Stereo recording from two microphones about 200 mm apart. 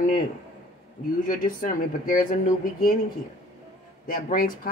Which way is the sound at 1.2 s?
45° left (ahead or behind).